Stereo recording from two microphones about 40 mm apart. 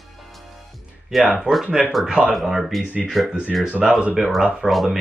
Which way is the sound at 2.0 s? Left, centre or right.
Right.